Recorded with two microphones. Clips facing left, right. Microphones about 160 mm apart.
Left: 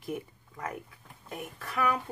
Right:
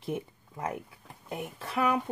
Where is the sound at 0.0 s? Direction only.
20° right (ahead or behind).